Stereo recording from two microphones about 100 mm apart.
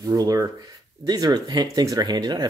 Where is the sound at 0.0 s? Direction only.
40° right (ahead or behind).